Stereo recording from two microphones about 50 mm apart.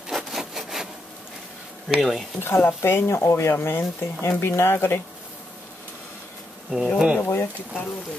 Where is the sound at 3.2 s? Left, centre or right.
Left.